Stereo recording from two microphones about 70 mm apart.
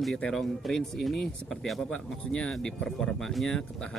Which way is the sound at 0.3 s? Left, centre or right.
Centre.